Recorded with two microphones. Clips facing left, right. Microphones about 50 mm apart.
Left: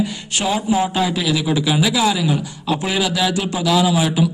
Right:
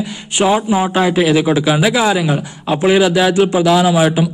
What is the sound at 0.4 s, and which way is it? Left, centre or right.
A man's voice, right.